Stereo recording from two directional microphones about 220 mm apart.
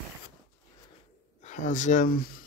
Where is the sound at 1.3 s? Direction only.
35° left (ahead or behind).